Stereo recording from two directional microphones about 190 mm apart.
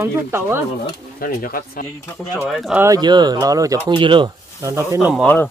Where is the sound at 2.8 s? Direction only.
20° right (ahead or behind).